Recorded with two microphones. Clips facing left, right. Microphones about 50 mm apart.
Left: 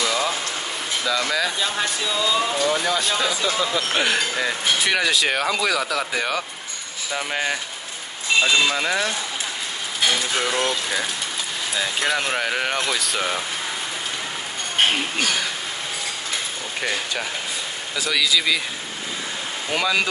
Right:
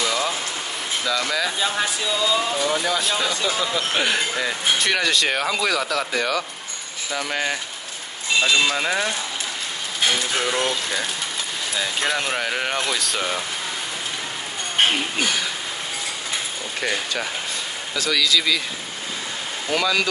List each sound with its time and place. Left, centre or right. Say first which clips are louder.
0.0 s a sound: left 1 dB; centre
1.0 s speech: left 1 dB; centre
7.2 s speech: left 1 dB; centre
14.9 s speech: even; centre
17.9 s a man's voice: right 1 dB; centre
19.7 s a man's voice: even; centre